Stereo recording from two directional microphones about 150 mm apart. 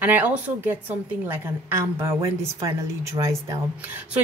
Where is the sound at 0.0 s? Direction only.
10° right (ahead or behind).